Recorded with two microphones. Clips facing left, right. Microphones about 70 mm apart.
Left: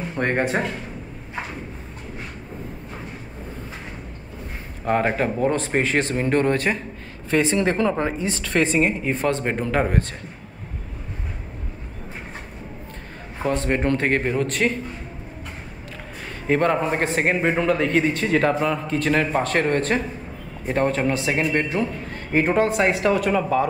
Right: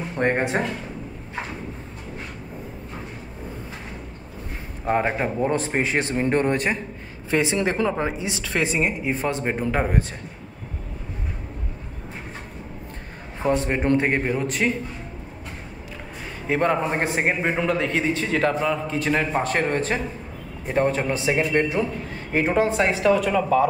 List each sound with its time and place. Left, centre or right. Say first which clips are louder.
0.2 s a man's voice: even; centre
4.8 s a man's voice: left 1 dB; centre
13.4 s a man's voice: even; centre
16.4 s speech: left 2 dB; centre
17.0 s a man's voice: left 1 dB; right
17.3 s a man's voice: left 4 dB; centre